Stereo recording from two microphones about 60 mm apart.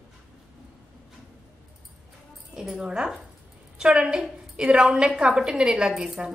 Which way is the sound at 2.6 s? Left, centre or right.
Centre.